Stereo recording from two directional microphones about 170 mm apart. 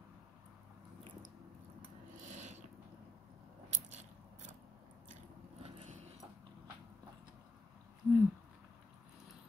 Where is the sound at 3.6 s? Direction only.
40° right (ahead or behind).